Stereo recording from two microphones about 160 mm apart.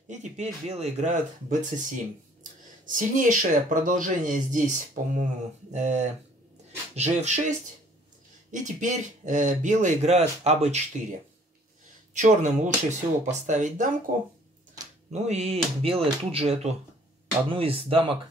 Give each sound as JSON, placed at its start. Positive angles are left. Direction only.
{"t": 0.1, "sound": "speech", "side_deg": -45}
{"t": 12.1, "sound": "speech", "side_deg": -50}
{"t": 15.2, "sound": "speech", "side_deg": -45}